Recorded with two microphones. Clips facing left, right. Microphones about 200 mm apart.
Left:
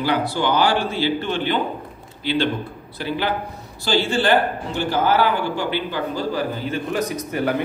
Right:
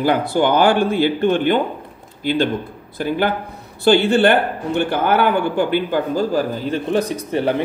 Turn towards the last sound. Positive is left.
turn(degrees=-30)  # may be behind; listen again after turning